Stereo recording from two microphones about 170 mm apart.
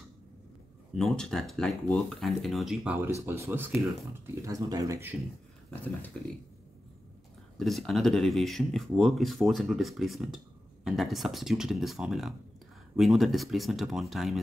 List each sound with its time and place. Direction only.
0.9 s speech: 5° left (ahead or behind)
3.2 s speech: 15° right (ahead or behind)
6.2 s speech: 5° left (ahead or behind)
7.5 s speech: centre (ahead or behind)